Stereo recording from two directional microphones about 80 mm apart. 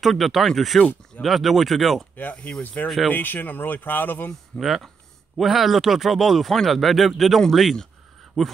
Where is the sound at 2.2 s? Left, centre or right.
Centre.